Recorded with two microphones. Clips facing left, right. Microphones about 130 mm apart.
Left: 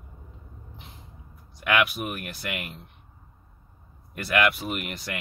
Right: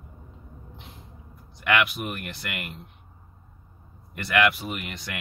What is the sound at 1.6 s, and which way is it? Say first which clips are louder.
Speech: even; 5° left (ahead or behind).